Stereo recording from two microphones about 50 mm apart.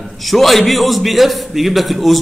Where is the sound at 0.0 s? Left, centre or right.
Centre.